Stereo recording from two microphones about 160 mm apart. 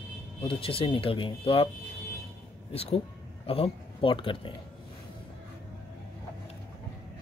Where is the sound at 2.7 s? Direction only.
40° left (ahead or behind).